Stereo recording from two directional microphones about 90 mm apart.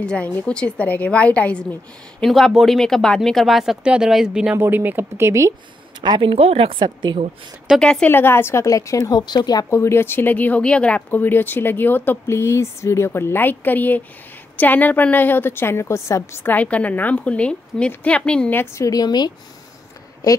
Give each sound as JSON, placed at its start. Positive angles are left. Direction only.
{"t": 0.0, "sound": "a woman's voice", "side_deg": 10}
{"t": 2.2, "sound": "speech", "side_deg": 0}
{"t": 4.6, "sound": "speech", "side_deg": -20}
{"t": 5.9, "sound": "speech", "side_deg": -55}
{"t": 7.8, "sound": "a woman's voice", "side_deg": 10}
{"t": 8.1, "sound": "a woman's voice", "side_deg": 25}
{"t": 9.1, "sound": "speech", "side_deg": 55}
{"t": 9.7, "sound": "speech", "side_deg": 30}
{"t": 16.5, "sound": "a woman's voice", "side_deg": 15}
{"t": 18.5, "sound": "speech", "side_deg": 25}
{"t": 18.9, "sound": "speech", "side_deg": 50}